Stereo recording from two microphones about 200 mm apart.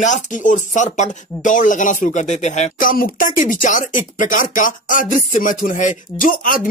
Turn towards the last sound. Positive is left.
turn(degrees=45)  # may be behind; listen again after turning